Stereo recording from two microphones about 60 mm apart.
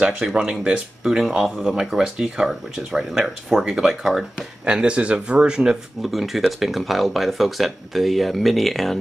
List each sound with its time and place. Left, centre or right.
0.0 s speech: centre
4.6 s speech: centre
6.1 s speech: centre